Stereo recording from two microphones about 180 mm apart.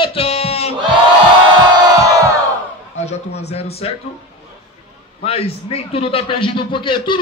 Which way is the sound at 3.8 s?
35° left (ahead or behind).